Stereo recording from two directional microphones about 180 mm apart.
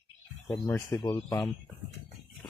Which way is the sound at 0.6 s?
20° left (ahead or behind).